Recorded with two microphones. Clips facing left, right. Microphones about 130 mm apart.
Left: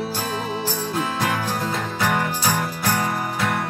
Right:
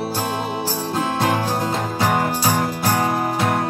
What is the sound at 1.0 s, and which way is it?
Music, 30° right (ahead or behind).